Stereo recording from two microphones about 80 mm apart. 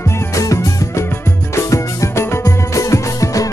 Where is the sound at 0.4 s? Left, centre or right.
Left.